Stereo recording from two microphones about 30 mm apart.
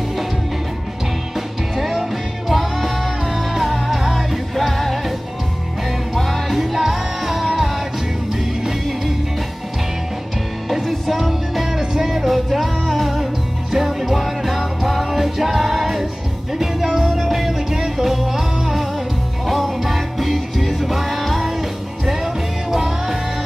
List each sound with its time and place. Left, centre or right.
1.3 s music: centre
6.1 s music: centre
10.7 s music: centre
11.8 s music: centre
12.3 s music: centre